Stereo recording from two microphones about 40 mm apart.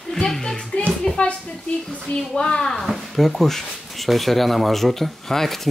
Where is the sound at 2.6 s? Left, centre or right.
Centre.